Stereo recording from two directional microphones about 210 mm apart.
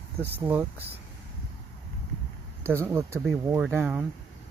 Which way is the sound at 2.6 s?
10° right (ahead or behind).